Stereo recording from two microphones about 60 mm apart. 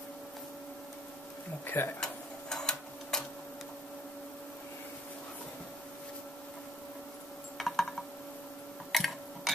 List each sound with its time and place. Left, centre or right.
1.7 s speech: left
2.5 s printer: centre
7.5 s computer keyboard: centre
8.9 s a sound: centre